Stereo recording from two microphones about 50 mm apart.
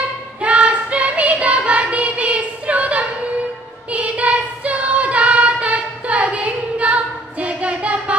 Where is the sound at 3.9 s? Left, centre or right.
Right.